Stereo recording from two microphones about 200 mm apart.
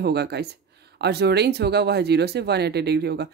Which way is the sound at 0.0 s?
55° right (ahead or behind).